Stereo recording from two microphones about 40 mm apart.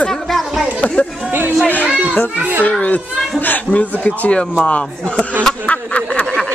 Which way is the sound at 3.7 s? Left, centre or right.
Left.